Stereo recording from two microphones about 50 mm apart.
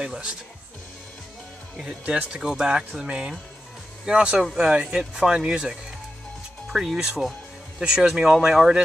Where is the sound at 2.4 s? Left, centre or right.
Centre.